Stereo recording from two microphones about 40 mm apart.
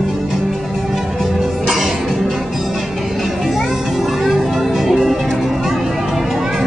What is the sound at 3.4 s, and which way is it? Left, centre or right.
Music, centre.